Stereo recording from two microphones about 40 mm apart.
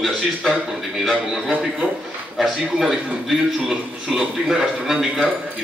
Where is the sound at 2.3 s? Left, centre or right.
Centre.